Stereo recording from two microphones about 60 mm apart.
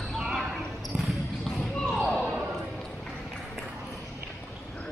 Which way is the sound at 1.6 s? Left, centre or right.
Centre.